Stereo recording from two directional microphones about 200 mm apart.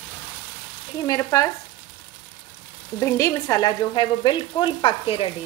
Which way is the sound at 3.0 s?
15° left (ahead or behind).